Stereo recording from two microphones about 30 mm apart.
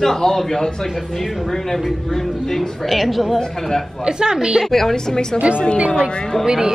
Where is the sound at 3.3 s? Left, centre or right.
Centre.